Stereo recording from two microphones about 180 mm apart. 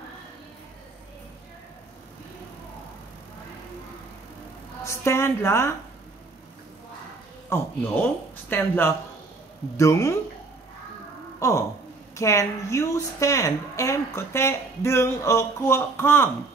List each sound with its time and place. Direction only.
4.8 s a woman's voice: 15° left (ahead or behind)
7.4 s a woman's voice: 15° left (ahead or behind)
11.3 s a sound: 15° left (ahead or behind)
12.2 s a woman's voice: 15° left (ahead or behind)